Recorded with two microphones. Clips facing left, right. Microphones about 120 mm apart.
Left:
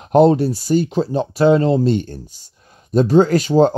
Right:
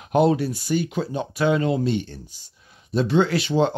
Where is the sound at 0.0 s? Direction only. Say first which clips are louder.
Left 7 dB; 40° left (ahead or behind).